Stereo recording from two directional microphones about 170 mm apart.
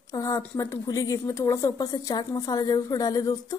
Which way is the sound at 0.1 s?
20° left (ahead or behind).